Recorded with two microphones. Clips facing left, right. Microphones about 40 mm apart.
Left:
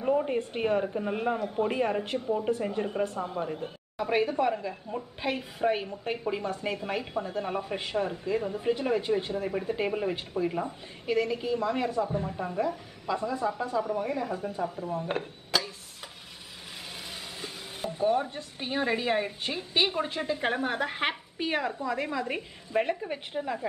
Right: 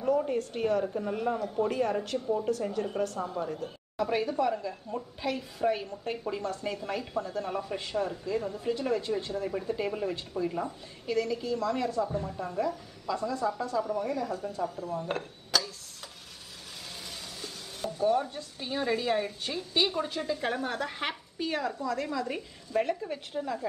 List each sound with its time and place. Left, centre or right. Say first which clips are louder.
0.0 s a woman's voice: left 1 dB; left
17.1 s a woman's voice: left 2 dB; left